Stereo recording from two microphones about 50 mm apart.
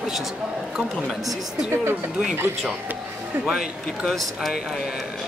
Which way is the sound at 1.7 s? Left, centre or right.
Right.